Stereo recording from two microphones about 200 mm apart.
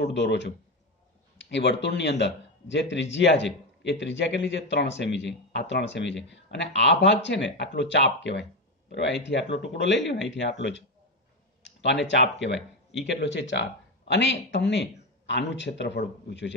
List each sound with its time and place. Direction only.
0.0 s a man's voice: 60° left (ahead or behind)
1.5 s a man's voice: 60° left (ahead or behind)
11.6 s a sound: 60° left (ahead or behind)
12.1 s a man's voice: 60° left (ahead or behind)